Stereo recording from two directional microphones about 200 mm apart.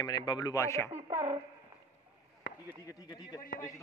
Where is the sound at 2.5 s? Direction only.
65° left (ahead or behind).